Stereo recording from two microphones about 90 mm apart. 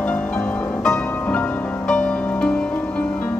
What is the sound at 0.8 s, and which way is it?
Music, 5° left (ahead or behind).